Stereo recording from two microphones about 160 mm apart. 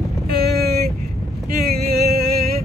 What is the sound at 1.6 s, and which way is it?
Music, 75° right (ahead or behind).